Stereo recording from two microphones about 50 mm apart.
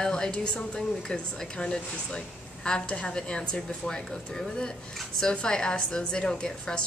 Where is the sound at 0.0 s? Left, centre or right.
Centre.